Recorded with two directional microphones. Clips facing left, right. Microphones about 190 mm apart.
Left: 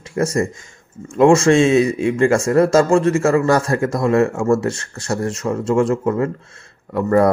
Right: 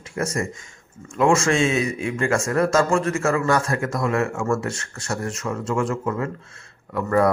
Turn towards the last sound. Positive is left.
turn(degrees=35)  # may be behind; listen again after turning